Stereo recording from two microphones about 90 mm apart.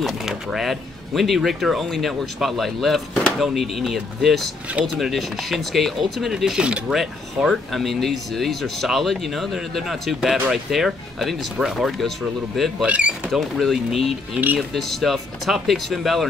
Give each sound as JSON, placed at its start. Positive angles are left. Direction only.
{"t": 0.0, "sound": "speech", "side_deg": -5}
{"t": 12.8, "sound": "speech", "side_deg": -15}
{"t": 13.3, "sound": "speech", "side_deg": 0}